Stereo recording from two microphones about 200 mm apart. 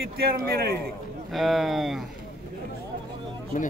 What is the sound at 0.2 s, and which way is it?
Speech, 50° right (ahead or behind).